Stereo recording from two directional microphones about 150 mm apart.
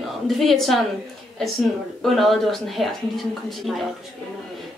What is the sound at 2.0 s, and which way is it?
A woman's voice, centre (ahead or behind).